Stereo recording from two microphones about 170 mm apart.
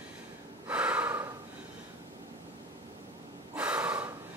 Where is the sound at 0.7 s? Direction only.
10° right (ahead or behind).